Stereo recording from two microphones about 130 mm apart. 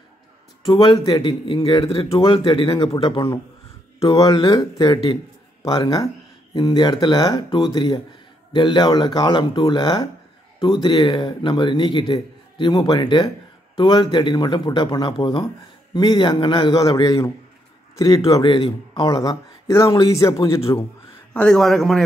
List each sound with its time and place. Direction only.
0.7 s a man's voice: 30° left (ahead or behind)
4.1 s a man's voice: 25° left (ahead or behind)
18.4 s a man's voice: 40° left (ahead or behind)
20.0 s speech: 25° left (ahead or behind)
21.3 s a man's voice: 10° left (ahead or behind)